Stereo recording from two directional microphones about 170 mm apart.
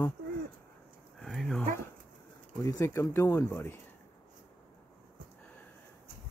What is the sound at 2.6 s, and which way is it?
Speech, 15° left (ahead or behind).